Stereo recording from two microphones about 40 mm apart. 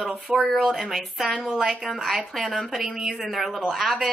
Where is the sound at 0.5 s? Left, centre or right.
Centre.